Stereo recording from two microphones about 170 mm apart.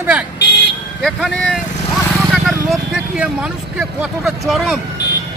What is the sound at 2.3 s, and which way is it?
Vehicle, centre (ahead or behind).